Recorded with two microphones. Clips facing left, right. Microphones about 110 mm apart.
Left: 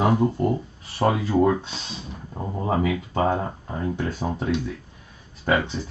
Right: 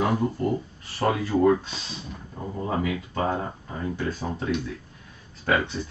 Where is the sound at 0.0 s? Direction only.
20° left (ahead or behind).